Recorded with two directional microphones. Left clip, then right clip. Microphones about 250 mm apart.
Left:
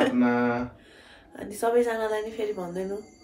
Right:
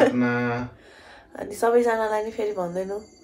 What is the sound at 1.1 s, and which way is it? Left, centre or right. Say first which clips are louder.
Speech: right 5 dB; centre.